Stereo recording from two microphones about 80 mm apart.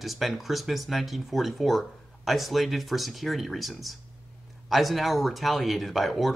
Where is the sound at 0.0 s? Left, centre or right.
Centre.